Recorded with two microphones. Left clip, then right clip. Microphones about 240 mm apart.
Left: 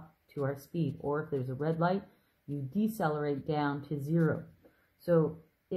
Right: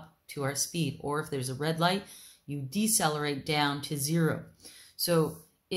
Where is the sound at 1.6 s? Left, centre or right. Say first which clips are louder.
Right 3 dB; centre.